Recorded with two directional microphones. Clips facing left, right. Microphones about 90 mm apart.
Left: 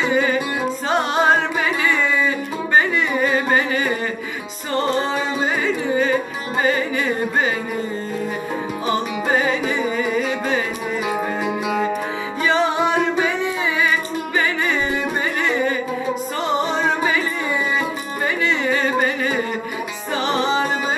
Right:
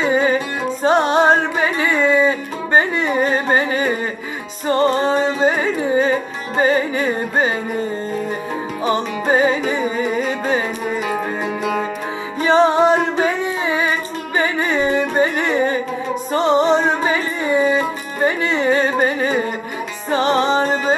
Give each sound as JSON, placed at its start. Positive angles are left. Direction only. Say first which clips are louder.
{"t": 0.0, "sound": "music", "louder": "right 2 dB", "side_deg": -30}
{"t": 8.8, "sound": "music", "louder": "right 3 dB", "side_deg": -30}
{"t": 12.4, "sound": "music", "louder": "right 5 dB", "side_deg": -35}